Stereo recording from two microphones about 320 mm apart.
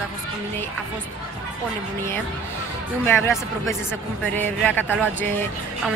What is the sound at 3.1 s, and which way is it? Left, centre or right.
Speech, centre.